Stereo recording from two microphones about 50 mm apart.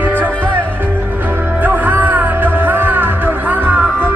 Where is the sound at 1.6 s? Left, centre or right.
Right.